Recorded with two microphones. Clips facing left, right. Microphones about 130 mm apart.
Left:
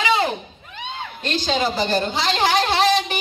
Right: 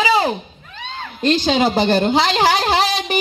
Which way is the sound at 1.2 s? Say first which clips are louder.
Right 7 dB; 50° right (ahead or behind).